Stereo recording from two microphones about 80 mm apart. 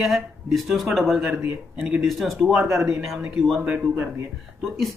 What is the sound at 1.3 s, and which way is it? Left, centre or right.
Speech, right.